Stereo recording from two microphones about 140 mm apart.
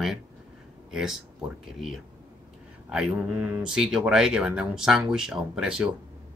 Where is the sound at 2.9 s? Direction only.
5° right (ahead or behind).